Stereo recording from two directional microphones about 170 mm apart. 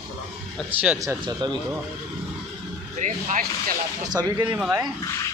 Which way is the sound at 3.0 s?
45° right (ahead or behind).